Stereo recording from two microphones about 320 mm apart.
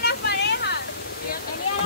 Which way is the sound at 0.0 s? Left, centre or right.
Left.